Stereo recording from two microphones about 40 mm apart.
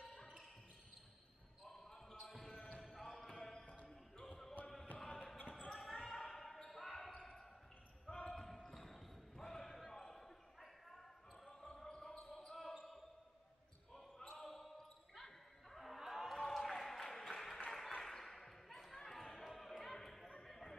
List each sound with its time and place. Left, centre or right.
1.6 s basketball bounce: centre
2.4 s basketball bounce: centre
2.8 s basketball bounce: centre
5.7 s basketball bounce: centre
8.1 s basketball bounce: left
8.4 s basketball bounce: centre
14.2 s basketball bounce: centre
16.4 s a sound: centre
17.3 s applause: centre
18.0 s basketball bounce: centre